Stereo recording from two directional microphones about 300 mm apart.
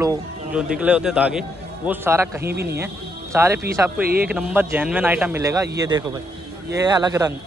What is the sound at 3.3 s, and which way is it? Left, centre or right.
Speech, centre.